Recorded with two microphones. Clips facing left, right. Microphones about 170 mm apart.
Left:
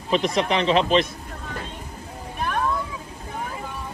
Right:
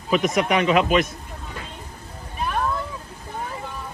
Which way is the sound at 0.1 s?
30° left (ahead or behind).